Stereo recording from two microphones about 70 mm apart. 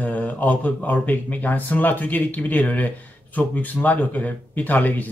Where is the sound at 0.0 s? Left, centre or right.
Left.